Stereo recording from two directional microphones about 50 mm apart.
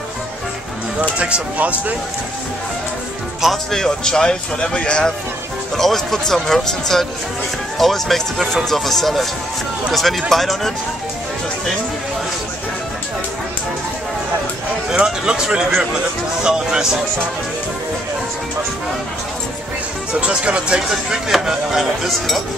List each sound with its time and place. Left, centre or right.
1.1 s speech: right
3.7 s speech: centre
5.8 s speech: centre
14.9 s speech: centre
20.2 s speech: right
21.3 s speech: centre